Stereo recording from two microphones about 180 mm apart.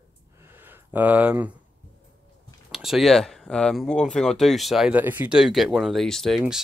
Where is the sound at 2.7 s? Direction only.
Centre (ahead or behind).